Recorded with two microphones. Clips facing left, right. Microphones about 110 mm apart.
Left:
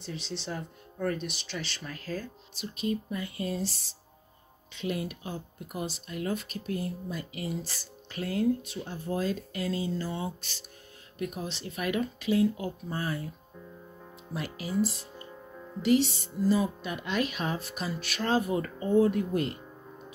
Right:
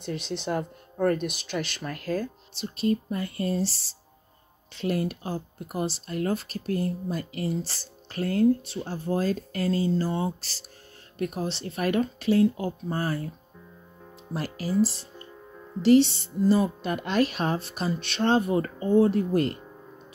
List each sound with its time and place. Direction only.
0.0 s speech: 60° right (ahead or behind)
2.6 s speech: 40° right (ahead or behind)
14.3 s speech: 40° right (ahead or behind)
16.4 s speech: 60° right (ahead or behind)
17.0 s speech: 35° right (ahead or behind)